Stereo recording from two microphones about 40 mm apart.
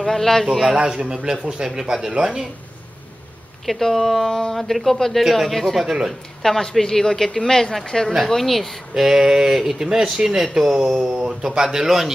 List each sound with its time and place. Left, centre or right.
0.0 s speech: centre
0.7 s speech: right
3.6 s speech: centre
5.9 s speech: centre
6.4 s speech: centre
8.9 s speech: centre